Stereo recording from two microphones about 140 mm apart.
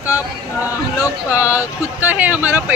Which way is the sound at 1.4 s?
10° right (ahead or behind).